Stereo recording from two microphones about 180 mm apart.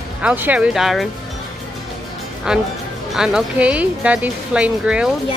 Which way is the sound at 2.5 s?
5° right (ahead or behind).